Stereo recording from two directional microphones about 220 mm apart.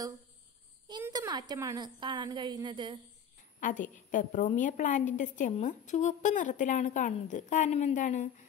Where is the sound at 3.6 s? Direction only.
35° left (ahead or behind).